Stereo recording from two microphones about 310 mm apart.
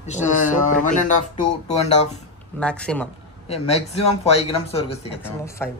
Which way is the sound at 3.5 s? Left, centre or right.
Centre.